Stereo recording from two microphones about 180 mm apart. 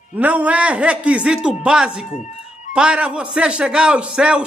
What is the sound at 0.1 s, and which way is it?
A man's voice, 10° right (ahead or behind).